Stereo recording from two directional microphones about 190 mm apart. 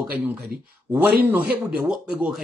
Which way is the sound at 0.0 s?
10° right (ahead or behind).